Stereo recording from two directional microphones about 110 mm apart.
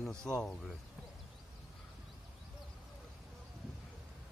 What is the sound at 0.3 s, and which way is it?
Speech, 5° left (ahead or behind).